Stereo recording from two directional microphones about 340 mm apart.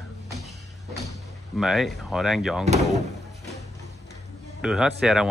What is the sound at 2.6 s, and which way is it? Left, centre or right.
Speech, centre.